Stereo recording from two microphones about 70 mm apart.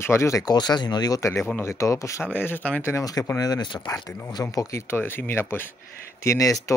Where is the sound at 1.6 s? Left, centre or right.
Left.